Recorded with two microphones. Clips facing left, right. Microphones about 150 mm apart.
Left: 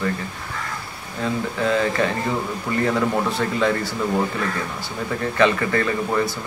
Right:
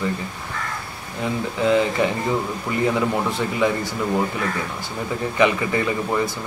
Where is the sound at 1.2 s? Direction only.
15° right (ahead or behind).